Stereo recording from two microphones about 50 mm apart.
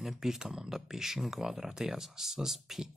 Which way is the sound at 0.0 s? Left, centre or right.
Centre.